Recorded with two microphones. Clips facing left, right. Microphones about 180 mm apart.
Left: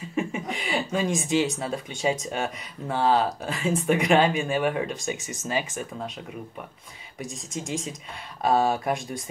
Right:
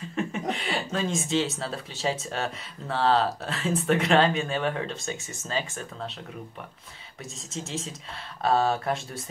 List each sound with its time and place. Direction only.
0.1 s speech: 10° left (ahead or behind)
7.5 s speech: 15° left (ahead or behind)